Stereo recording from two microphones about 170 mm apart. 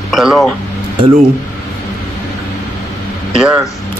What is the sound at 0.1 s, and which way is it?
Speech, centre (ahead or behind).